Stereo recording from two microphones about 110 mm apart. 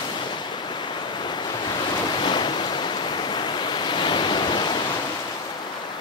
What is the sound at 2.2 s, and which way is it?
Waves, 45° left (ahead or behind).